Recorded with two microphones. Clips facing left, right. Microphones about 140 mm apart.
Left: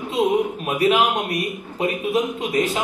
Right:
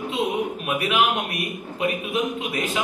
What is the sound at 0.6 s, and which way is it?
A man's voice, 35° left (ahead or behind).